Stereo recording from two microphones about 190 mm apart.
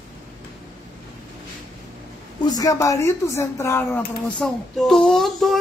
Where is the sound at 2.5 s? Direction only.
20° left (ahead or behind); by 5.6 s centre (ahead or behind).